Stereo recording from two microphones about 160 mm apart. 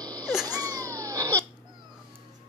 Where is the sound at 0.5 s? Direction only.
25° right (ahead or behind).